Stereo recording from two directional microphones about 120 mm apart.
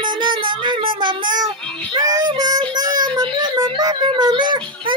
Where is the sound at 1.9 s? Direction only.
30° right (ahead or behind).